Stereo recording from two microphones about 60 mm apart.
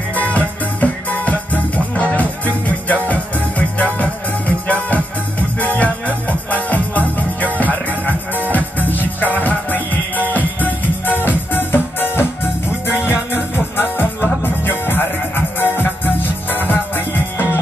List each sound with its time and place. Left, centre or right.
0.2 s music: left